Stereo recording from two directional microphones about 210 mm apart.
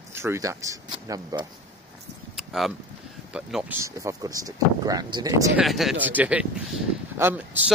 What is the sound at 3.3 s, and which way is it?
Speech, 5° right (ahead or behind).